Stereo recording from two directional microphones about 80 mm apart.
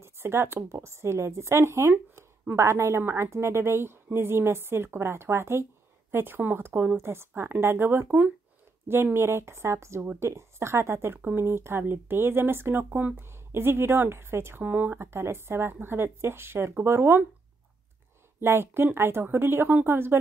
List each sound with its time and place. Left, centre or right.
0.0 s speech: right
18.4 s speech: right